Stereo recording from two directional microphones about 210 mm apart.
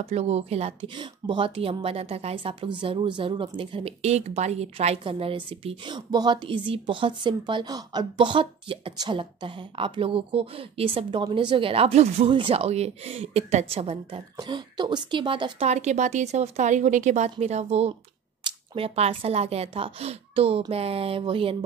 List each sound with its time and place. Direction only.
0.0 s a woman's voice: 30° right (ahead or behind)